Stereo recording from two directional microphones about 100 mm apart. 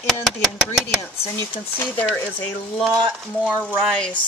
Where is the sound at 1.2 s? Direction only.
20° left (ahead or behind).